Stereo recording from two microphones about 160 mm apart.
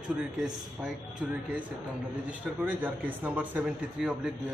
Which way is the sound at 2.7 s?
10° right (ahead or behind).